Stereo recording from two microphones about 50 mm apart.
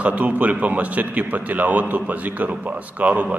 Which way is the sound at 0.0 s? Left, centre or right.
Right.